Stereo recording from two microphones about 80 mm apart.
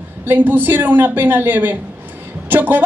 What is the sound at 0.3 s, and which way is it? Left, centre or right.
A woman's voice, right.